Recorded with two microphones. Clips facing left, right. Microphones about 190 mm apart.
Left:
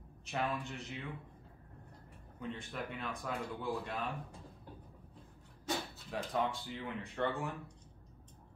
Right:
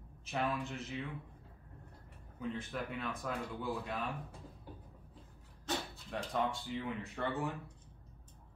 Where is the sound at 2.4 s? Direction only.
Centre (ahead or behind).